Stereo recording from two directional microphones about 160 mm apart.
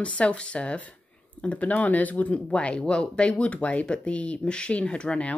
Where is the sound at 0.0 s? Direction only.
5° left (ahead or behind).